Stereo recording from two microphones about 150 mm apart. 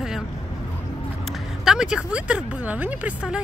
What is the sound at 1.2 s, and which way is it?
Speech, 5° right (ahead or behind).